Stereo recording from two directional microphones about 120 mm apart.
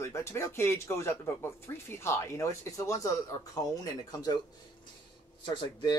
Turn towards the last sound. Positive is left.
turn(degrees=45)  # may be behind; listen again after turning